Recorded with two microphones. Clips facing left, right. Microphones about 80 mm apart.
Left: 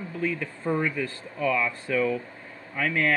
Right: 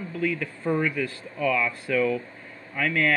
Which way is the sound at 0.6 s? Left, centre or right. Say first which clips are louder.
Right 1 dB; left.